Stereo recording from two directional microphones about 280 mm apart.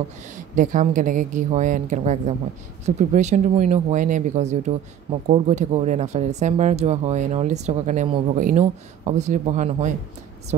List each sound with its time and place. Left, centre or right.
0.6 s speech: right